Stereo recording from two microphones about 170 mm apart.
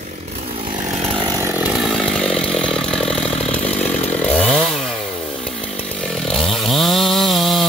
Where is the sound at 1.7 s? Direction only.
Centre (ahead or behind).